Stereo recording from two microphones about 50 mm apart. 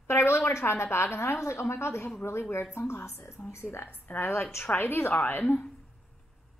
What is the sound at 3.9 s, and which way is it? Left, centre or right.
A woman's voice, left.